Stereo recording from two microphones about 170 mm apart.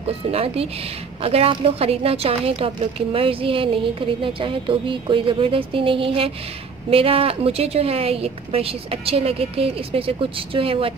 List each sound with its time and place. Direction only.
0.0 s a woman's voice: 35° right (ahead or behind)